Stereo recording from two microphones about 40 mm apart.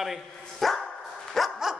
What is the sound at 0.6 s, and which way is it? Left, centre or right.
Dog, centre.